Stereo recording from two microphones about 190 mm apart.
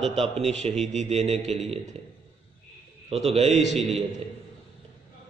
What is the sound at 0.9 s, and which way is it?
Speech, 35° right (ahead or behind).